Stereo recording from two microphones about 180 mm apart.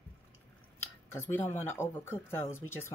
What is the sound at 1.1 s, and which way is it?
Speech, 10° left (ahead or behind).